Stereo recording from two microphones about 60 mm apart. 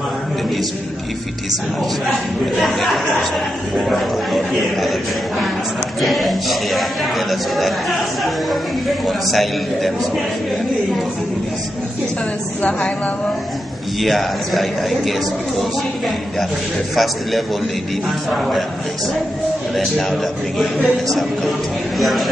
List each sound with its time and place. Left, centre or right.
2.6 s speech: centre
5.9 s speech: centre
9.0 s speech: centre
12.6 s a woman's voice: left
13.9 s speech: centre
16.9 s speech: centre
19.7 s speech: centre